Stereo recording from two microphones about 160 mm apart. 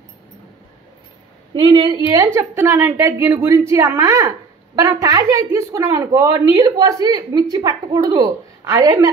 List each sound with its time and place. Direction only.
1.5 s a woman's voice: 30° right (ahead or behind)
2.0 s a woman's voice: 15° right (ahead or behind)